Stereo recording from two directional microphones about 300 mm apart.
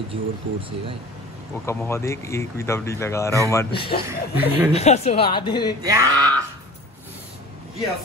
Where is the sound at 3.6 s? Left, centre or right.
Left.